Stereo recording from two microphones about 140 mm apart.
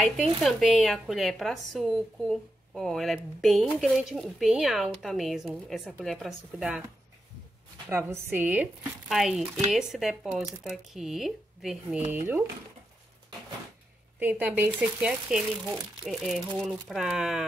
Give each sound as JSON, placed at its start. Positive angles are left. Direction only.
{"t": 0.4, "sound": "speech", "side_deg": 0}
{"t": 7.9, "sound": "a woman's voice", "side_deg": -20}
{"t": 14.2, "sound": "speech", "side_deg": -10}